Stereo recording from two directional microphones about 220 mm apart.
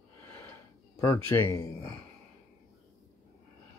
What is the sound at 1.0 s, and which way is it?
Speech, 15° left (ahead or behind).